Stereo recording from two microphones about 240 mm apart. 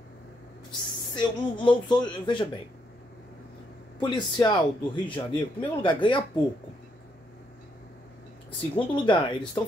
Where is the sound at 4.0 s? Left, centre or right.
Centre.